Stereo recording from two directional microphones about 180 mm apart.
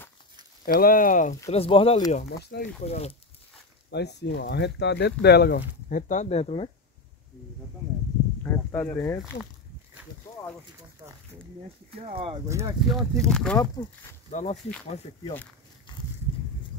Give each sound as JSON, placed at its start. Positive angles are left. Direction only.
{"t": 0.7, "sound": "speech", "side_deg": 55}
{"t": 1.5, "sound": "speech", "side_deg": 30}
{"t": 2.2, "sound": "speech", "side_deg": 65}
{"t": 2.8, "sound": "speech", "side_deg": 35}
{"t": 3.9, "sound": "speech", "side_deg": 70}
{"t": 8.5, "sound": "speech", "side_deg": 10}
{"t": 11.9, "sound": "speech", "side_deg": -30}
{"t": 12.4, "sound": "speech", "side_deg": -15}
{"t": 12.9, "sound": "speech", "side_deg": 0}
{"t": 13.8, "sound": "speech", "side_deg": 25}
{"t": 14.3, "sound": "speech", "side_deg": 40}